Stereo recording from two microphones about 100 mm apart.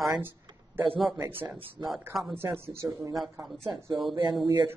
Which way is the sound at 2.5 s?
35° right (ahead or behind).